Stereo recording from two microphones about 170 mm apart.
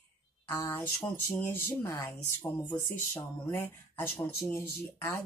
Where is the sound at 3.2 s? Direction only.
10° left (ahead or behind).